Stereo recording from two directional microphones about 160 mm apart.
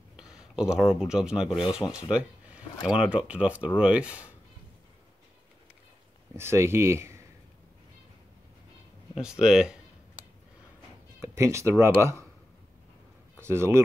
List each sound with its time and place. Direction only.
0.1 s speech: 5° right (ahead or behind)
6.3 s speech: 15° right (ahead or behind)
9.2 s speech: 5° right (ahead or behind)
11.1 s speech: 15° right (ahead or behind)
13.4 s speech: 15° right (ahead or behind)